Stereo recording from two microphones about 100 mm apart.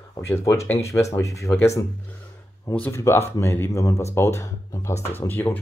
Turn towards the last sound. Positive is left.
turn(degrees=20)  # may be behind; listen again after turning